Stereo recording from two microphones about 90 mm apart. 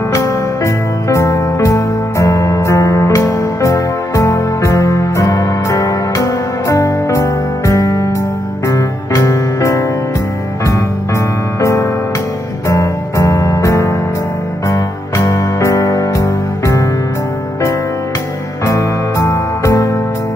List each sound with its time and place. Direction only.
0.1 s music: 30° left (ahead or behind)
12.6 s music: 35° left (ahead or behind)
18.7 s music: 35° left (ahead or behind)